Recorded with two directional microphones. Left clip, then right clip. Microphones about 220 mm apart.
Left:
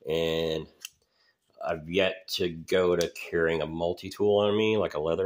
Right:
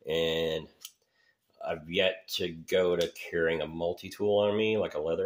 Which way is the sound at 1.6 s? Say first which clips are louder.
Left 2 dB; 25° left (ahead or behind).